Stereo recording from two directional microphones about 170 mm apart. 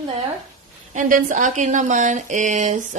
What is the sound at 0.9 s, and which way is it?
Speech, 50° right (ahead or behind).